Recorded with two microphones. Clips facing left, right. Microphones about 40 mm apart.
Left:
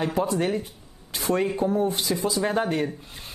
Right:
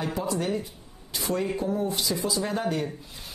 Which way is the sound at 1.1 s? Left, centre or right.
Left.